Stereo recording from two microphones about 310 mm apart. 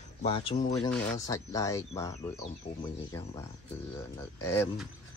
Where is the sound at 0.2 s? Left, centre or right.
Centre.